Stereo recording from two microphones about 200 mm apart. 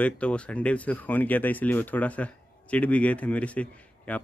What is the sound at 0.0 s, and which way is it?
Speech, 5° left (ahead or behind).